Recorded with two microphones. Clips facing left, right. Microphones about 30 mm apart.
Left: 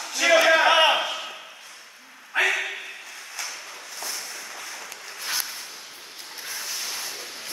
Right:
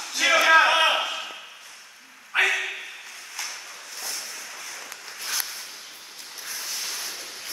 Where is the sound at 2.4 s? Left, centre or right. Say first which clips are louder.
Even; centre.